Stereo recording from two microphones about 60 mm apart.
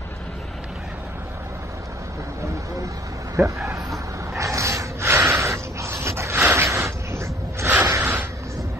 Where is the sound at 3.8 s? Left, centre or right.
Right.